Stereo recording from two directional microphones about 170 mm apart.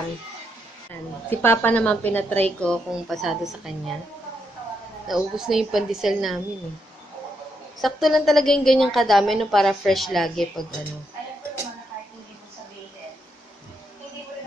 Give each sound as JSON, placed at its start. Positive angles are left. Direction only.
{"t": 1.3, "sound": "a woman's voice", "side_deg": 10}
{"t": 5.0, "sound": "a woman's voice", "side_deg": 0}
{"t": 7.8, "sound": "a woman's voice", "side_deg": 0}